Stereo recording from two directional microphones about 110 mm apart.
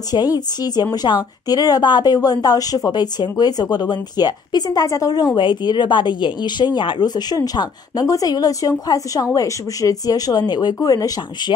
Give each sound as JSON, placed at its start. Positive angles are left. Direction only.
{"t": 0.1, "sound": "a woman's voice", "side_deg": 35}